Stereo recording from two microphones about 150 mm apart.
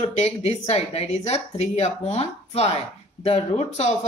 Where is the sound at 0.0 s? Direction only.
45° left (ahead or behind).